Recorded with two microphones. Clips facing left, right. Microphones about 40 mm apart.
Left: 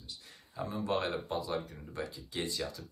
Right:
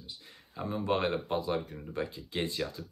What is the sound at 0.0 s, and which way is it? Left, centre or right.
Speech, right.